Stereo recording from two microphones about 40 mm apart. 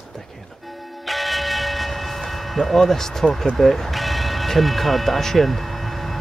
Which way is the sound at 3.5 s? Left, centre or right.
Centre.